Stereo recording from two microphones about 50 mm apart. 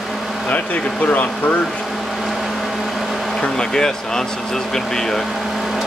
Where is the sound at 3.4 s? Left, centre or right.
Centre.